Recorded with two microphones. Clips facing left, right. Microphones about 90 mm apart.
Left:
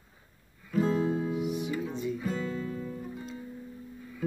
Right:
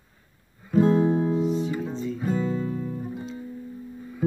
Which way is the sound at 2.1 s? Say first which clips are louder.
Right 6 dB; 30° right (ahead or behind).